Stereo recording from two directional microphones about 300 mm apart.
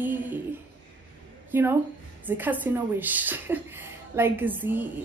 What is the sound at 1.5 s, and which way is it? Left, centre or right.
A woman's voice, centre.